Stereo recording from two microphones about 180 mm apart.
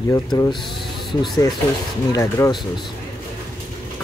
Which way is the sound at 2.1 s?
15° left (ahead or behind).